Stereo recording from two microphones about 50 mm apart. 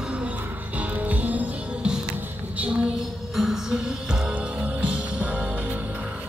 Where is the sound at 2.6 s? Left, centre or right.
Right.